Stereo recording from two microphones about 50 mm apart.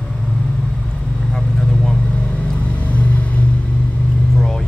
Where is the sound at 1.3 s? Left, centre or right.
Centre.